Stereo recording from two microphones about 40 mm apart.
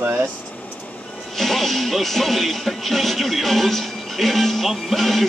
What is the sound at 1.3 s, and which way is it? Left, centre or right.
Music, centre.